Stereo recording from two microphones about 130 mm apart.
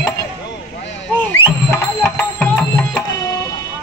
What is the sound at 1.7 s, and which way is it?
Music, 20° left (ahead or behind).